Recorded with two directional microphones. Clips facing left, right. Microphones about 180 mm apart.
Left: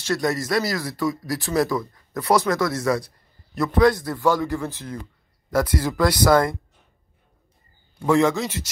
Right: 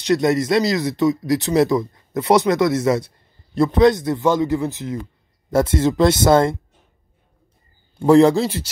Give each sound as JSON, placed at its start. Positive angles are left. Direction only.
{"t": 0.0, "sound": "speech", "side_deg": -20}
{"t": 8.0, "sound": "a man's voice", "side_deg": -35}